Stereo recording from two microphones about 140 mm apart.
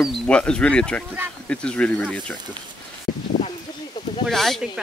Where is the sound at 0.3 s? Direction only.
10° left (ahead or behind).